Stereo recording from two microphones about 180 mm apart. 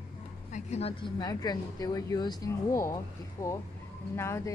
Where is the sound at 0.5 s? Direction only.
35° left (ahead or behind); by 2.9 s 15° left (ahead or behind).